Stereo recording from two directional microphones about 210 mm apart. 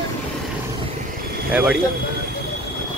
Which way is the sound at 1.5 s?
5° right (ahead or behind).